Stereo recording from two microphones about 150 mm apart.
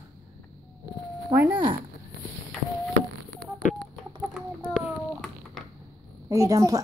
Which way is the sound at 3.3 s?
5° left (ahead or behind).